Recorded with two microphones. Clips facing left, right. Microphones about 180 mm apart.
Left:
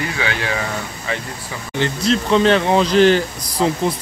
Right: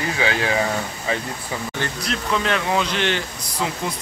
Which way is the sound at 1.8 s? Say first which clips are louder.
Left 12 dB; 25° left (ahead or behind).